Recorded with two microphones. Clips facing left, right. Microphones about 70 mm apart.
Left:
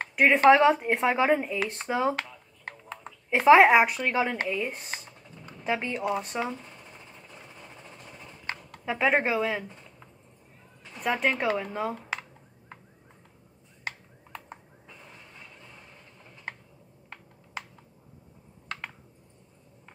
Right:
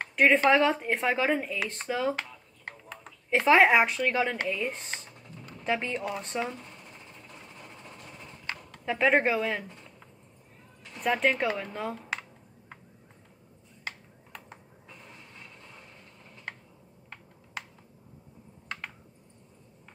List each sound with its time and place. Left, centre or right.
0.1 s a sound: centre
0.5 s speech: centre
3.3 s speech: centre
8.8 s speech: centre
11.0 s speech: centre